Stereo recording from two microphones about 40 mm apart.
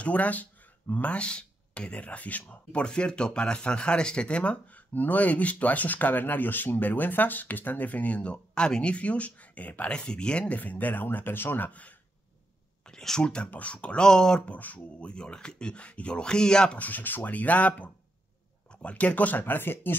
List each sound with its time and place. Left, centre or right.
0.0 s speech: left
2.5 s speech: left
8.9 s speech: left
9.8 s speech: left
10.5 s speech: left
13.0 s speech: centre
13.5 s speech: left
14.0 s speech: centre
14.4 s speech: left; by 16.7 s centre
16.7 s speech: left